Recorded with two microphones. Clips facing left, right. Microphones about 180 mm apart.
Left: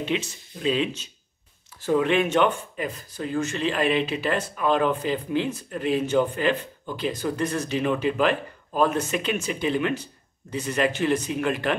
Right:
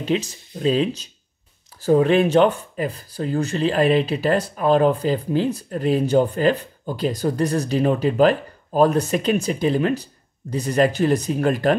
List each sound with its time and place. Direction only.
0.0 s speech: 40° right (ahead or behind)